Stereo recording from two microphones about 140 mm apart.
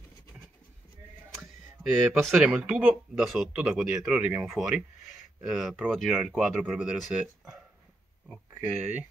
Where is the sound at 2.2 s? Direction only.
15° right (ahead or behind).